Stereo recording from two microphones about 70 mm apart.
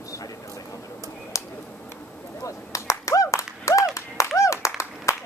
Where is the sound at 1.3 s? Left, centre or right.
Left.